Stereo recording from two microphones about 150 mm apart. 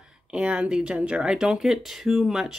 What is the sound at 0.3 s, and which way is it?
Speech, 5° right (ahead or behind).